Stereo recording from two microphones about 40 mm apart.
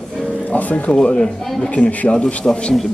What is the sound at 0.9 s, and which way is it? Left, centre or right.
Speech, left.